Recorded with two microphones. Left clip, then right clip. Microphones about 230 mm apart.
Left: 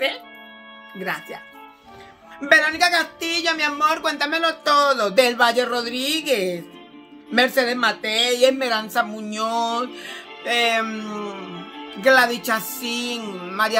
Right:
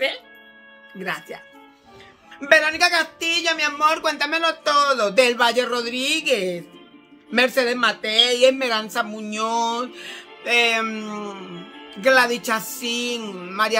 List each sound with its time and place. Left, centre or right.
1.0 s speech: centre
2.4 s speech: centre
11.5 s music: left
12.0 s speech: centre